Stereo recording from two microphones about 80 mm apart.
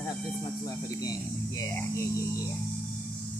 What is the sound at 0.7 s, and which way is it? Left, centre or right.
Speech, left.